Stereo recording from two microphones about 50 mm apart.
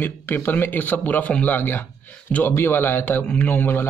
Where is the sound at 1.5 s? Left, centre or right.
Left.